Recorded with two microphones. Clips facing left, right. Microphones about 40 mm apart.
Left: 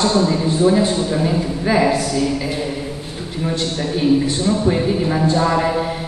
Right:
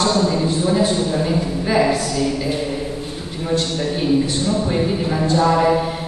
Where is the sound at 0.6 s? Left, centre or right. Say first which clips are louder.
Left 3 dB; centre.